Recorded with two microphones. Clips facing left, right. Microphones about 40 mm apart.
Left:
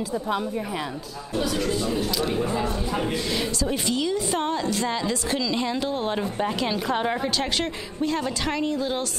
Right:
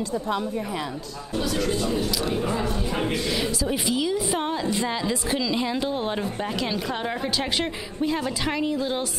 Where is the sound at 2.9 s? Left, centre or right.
Centre.